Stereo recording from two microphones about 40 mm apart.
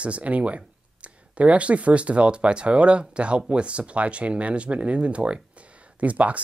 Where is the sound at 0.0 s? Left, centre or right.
Right.